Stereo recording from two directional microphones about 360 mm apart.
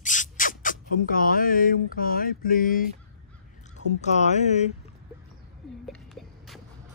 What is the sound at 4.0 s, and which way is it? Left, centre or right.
Speech, centre.